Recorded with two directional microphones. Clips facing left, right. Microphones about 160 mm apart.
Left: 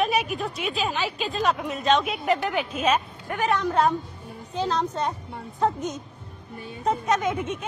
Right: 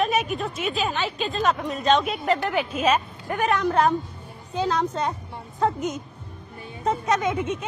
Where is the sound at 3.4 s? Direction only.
75° right (ahead or behind).